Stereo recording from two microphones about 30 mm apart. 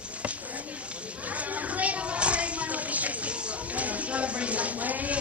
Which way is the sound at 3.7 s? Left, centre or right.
Right.